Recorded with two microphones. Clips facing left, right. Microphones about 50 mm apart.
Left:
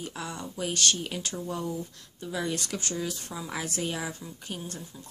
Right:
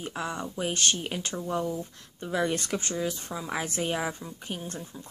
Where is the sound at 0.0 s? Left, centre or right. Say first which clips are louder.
Right 4 dB; right.